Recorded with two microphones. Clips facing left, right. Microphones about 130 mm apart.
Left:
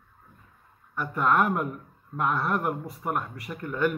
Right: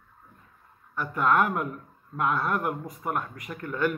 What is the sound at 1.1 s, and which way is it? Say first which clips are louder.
Speech: even; 5° left (ahead or behind).